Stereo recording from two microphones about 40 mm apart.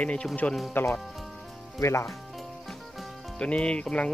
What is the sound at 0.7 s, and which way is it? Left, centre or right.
Speech, left.